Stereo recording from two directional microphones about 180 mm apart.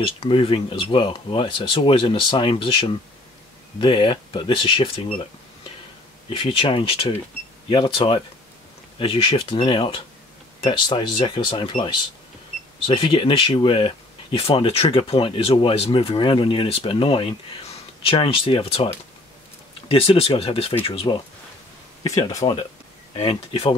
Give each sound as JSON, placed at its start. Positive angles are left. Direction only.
{"t": 0.2, "sound": "speech", "side_deg": 30}
{"t": 6.3, "sound": "speech", "side_deg": 30}
{"t": 19.9, "sound": "speech", "side_deg": 30}
{"t": 22.0, "sound": "speech", "side_deg": 20}
{"t": 23.1, "sound": "speech", "side_deg": 35}